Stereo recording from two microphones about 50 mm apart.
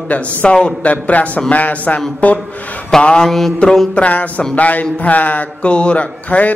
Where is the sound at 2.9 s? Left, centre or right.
Centre.